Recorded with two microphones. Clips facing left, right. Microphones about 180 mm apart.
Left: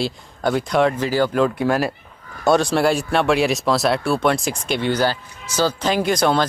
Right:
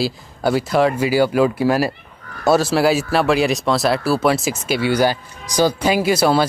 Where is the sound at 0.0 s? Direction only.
5° right (ahead or behind).